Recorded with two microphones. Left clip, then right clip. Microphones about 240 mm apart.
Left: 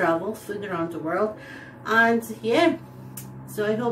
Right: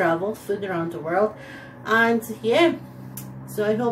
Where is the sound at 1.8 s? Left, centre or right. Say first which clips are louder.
Even; centre.